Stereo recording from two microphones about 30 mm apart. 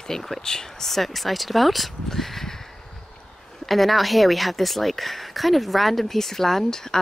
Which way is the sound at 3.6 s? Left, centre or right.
Centre.